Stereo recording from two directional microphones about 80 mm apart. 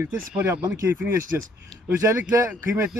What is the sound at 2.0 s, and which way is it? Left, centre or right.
Speech, right.